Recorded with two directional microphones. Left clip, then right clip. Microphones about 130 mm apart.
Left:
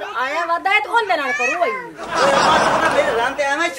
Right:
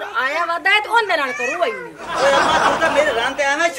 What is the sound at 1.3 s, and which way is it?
Speech, 25° left (ahead or behind).